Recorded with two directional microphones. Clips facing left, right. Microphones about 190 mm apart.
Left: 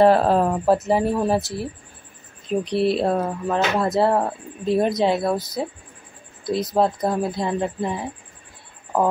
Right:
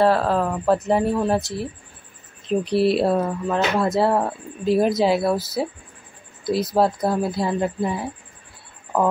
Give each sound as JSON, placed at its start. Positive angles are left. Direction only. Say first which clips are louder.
{"t": 0.0, "sound": "speech", "louder": "left 3 dB", "side_deg": 20}
{"t": 0.8, "sound": "speech", "louder": "even", "side_deg": 0}